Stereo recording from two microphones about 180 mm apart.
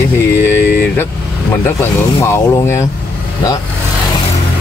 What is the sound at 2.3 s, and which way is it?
Speech, 15° left (ahead or behind).